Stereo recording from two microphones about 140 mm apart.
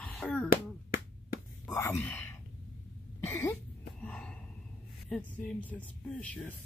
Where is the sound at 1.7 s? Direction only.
20° left (ahead or behind).